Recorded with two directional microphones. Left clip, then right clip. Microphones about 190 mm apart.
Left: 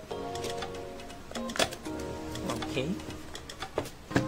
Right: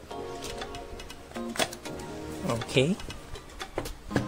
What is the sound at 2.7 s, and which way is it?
Speech, 45° right (ahead or behind).